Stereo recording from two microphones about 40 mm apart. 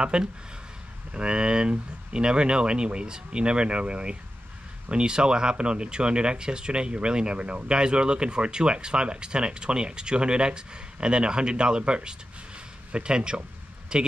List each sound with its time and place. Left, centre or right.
0.0 s speech: right